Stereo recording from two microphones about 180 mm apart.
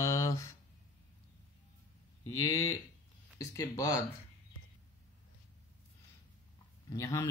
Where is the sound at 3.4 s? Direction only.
15° left (ahead or behind).